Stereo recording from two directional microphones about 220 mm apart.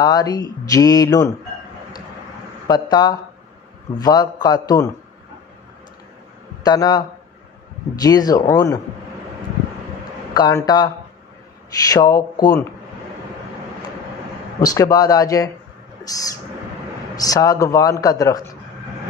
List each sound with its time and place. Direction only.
0.0 s a man's voice: 20° left (ahead or behind)
2.7 s a man's voice: 20° left (ahead or behind)
6.6 s a man's voice: 15° left (ahead or behind)
10.3 s a man's voice: 15° left (ahead or behind)
11.9 s a man's voice: 15° left (ahead or behind)
14.6 s a man's voice: 15° left (ahead or behind)
16.0 s a sound: 15° left (ahead or behind)
17.1 s a man's voice: 15° left (ahead or behind)